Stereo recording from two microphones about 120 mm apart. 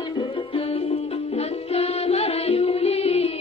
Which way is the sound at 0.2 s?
50° left (ahead or behind).